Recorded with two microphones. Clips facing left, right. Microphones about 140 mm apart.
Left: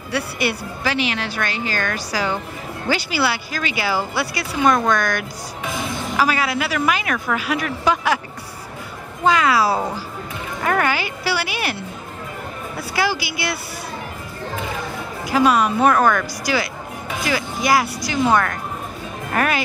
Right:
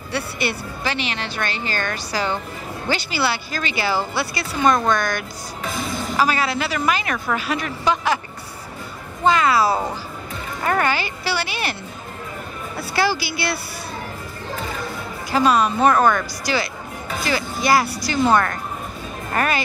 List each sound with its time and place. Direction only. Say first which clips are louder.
0.1 s speech: left 2 dB; 10° left (ahead or behind)
9.2 s speech: even; 10° left (ahead or behind)
12.9 s speech: right 1 dB; 15° left (ahead or behind)
15.2 s speech: left 1 dB; 10° left (ahead or behind)
15.9 s speech: even; 15° right (ahead or behind)
16.5 s speech: left 1 dB; 10° left (ahead or behind)